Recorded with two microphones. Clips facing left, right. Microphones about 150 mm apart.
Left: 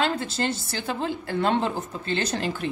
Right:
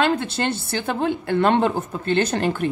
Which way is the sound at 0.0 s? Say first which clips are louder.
Right 4 dB; 65° right (ahead or behind).